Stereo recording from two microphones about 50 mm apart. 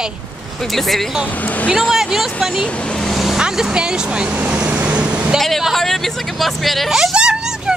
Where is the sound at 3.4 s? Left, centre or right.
Centre.